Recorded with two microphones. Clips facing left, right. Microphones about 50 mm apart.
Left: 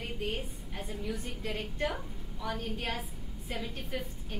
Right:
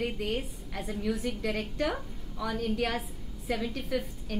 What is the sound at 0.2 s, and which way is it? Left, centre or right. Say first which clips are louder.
A woman's voice: right 3 dB; right.